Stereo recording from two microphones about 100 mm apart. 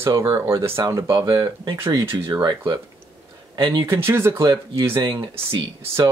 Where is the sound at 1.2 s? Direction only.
45° right (ahead or behind).